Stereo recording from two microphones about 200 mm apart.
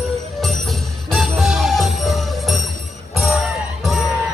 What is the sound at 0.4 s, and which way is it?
Music, centre (ahead or behind).